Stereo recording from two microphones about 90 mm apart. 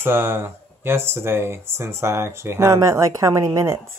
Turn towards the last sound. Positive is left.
turn(degrees=-30)  # may be behind; listen again after turning